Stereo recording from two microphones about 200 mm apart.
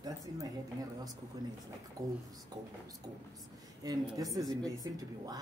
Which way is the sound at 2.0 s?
15° right (ahead or behind).